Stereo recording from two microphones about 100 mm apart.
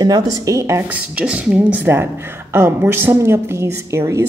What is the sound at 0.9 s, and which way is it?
A woman's voice, 10° right (ahead or behind).